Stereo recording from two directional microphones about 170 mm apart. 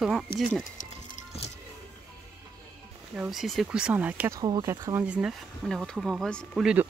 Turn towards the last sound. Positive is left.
turn(degrees=-5)  # may be behind; listen again after turning